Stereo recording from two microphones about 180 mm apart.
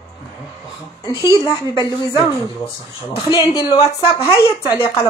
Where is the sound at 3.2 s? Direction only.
20° left (ahead or behind).